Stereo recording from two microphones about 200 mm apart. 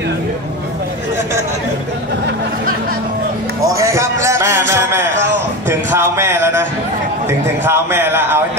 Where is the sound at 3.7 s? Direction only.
15° right (ahead or behind).